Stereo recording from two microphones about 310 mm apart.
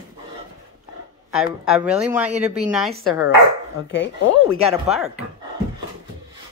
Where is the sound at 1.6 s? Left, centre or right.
Centre.